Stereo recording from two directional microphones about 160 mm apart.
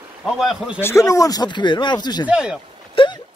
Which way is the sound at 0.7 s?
15° left (ahead or behind).